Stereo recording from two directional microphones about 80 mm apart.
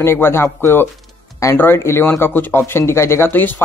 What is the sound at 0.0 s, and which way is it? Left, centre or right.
Speech, left.